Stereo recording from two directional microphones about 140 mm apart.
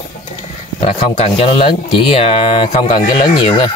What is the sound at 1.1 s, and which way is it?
Speech, 50° left (ahead or behind).